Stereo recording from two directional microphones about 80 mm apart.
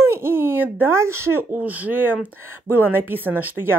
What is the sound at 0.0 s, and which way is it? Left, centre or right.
Speech, right.